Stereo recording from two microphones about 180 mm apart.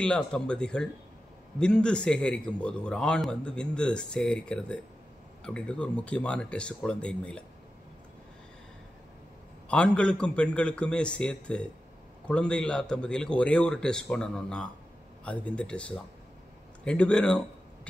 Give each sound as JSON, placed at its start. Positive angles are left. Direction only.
{"t": 0.0, "sound": "a man's voice", "side_deg": 5}
{"t": 9.7, "sound": "a man's voice", "side_deg": 5}